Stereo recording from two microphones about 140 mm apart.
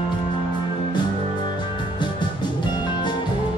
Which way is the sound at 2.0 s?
35° left (ahead or behind).